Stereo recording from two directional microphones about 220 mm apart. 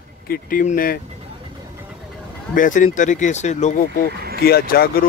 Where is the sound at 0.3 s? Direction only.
40° left (ahead or behind).